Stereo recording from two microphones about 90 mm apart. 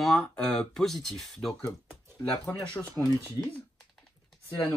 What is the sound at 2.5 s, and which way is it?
Speech, 20° left (ahead or behind).